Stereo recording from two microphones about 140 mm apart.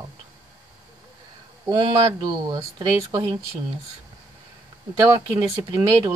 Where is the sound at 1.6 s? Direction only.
40° right (ahead or behind).